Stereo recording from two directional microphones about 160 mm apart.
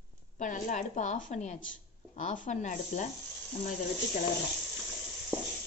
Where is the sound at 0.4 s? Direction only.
50° left (ahead or behind).